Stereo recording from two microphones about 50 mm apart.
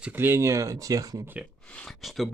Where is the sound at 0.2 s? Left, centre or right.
Right.